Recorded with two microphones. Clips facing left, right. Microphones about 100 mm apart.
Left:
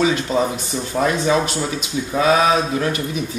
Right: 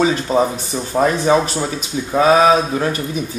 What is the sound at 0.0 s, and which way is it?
Speech, 35° right (ahead or behind).